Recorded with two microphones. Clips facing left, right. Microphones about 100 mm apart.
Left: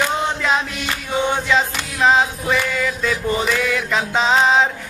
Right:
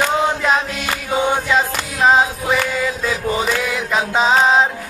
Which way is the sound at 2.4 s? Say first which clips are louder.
Right 1 dB; 20° right (ahead or behind).